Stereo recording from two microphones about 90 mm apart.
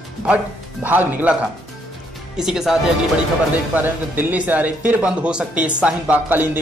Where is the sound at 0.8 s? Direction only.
20° right (ahead or behind).